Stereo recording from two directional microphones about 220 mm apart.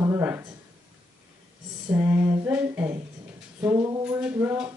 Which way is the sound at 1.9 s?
10° right (ahead or behind).